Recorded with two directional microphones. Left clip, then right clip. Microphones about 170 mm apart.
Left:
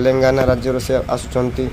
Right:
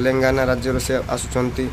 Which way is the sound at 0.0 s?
15° left (ahead or behind).